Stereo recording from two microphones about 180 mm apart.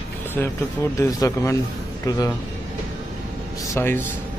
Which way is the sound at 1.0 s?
15° left (ahead or behind).